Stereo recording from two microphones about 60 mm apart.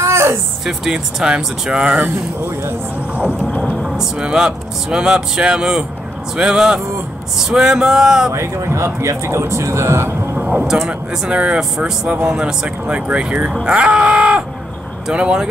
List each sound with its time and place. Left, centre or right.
0.0 s a sound: right
0.7 s speech: centre
3.8 s speech: centre
8.3 s speech: right
10.5 s speech: centre